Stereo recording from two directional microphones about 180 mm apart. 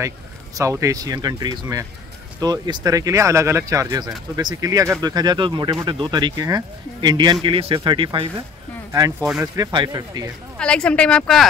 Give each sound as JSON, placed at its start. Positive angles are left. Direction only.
{"t": 0.6, "sound": "speech", "side_deg": -20}
{"t": 9.4, "sound": "speech", "side_deg": -25}
{"t": 10.6, "sound": "speech", "side_deg": 5}